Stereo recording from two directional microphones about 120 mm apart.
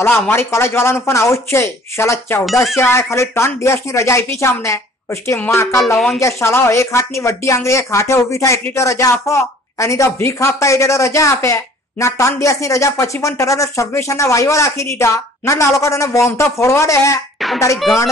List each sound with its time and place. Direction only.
0.0 s a woman's voice: 20° left (ahead or behind)